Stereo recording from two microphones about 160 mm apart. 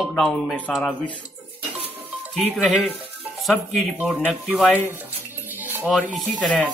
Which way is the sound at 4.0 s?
10° right (ahead or behind).